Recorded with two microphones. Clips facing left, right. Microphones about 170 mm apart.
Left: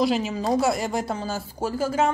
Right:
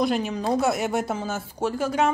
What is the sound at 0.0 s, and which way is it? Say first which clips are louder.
Speech: left 1 dB; centre (ahead or behind).